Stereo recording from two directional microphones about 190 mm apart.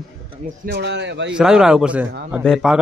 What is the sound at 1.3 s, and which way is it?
Speech, 5° right (ahead or behind).